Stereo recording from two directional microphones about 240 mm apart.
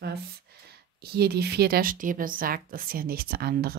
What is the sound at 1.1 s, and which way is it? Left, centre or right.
Speech, right.